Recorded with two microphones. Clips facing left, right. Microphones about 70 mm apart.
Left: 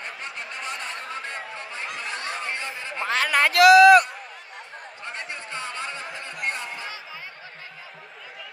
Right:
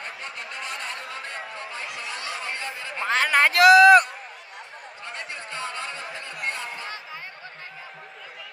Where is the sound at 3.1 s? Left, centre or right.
Right.